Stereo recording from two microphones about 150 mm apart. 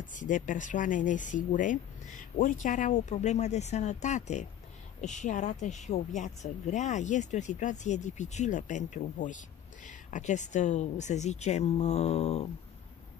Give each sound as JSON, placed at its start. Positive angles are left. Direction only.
{"t": 0.0, "sound": "a woman's voice", "side_deg": 60}